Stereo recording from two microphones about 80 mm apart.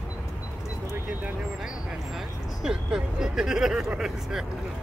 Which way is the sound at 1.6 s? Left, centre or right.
Centre.